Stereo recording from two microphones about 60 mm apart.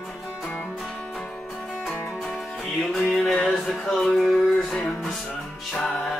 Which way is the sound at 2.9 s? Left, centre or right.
Centre.